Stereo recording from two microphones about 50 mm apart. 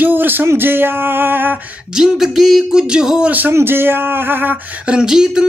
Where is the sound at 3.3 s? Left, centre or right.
Right.